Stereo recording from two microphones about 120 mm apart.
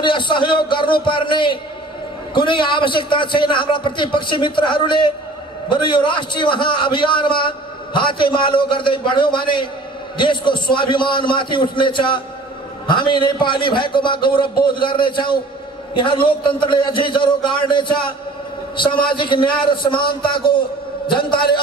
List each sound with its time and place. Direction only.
0.0 s a man's voice: 40° left (ahead or behind)
19.0 s a man's voice: 45° left (ahead or behind)